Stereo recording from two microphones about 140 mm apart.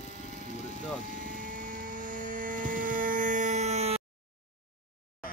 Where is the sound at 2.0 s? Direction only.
70° right (ahead or behind); by 4.0 s 50° right (ahead or behind).